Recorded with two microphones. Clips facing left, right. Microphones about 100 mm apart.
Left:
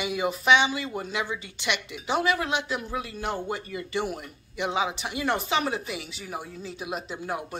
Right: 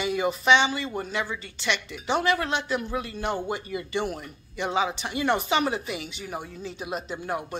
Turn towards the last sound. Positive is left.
turn(degrees=5)  # may be behind; listen again after turning